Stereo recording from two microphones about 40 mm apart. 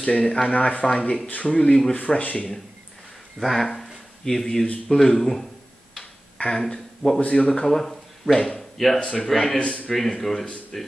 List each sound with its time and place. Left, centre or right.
0.0 s speech: left
2.0 s speech: left
3.3 s a man's voice: centre
6.3 s a sound: left
6.7 s speech: centre
7.3 s speech: left
7.6 s a man's voice: centre